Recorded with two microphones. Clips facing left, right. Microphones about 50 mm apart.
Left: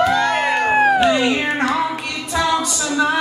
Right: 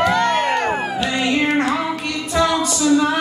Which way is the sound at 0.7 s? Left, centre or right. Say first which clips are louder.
Left 9 dB; left.